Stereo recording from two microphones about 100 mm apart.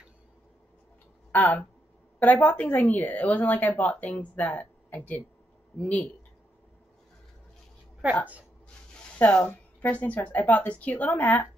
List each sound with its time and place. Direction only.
1.3 s speech: 15° left (ahead or behind)
9.2 s speech: 15° left (ahead or behind)